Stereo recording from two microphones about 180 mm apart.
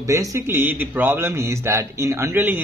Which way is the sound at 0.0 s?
20° right (ahead or behind).